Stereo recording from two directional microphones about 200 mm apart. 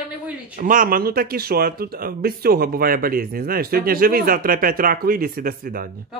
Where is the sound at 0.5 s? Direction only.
45° right (ahead or behind).